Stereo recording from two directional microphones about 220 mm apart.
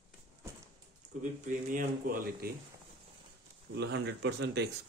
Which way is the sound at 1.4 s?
35° right (ahead or behind).